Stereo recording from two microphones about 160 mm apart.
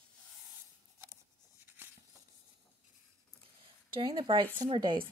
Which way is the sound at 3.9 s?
30° right (ahead or behind).